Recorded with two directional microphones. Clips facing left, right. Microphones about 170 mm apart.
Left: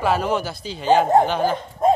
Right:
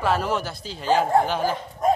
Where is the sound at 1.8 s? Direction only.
30° left (ahead or behind).